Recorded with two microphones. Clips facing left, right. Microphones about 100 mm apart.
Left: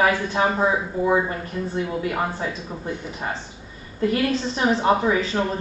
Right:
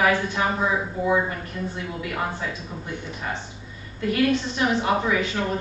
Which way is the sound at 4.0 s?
30° left (ahead or behind).